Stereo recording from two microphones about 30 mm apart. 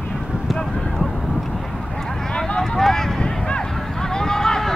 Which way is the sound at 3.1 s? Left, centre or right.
Left.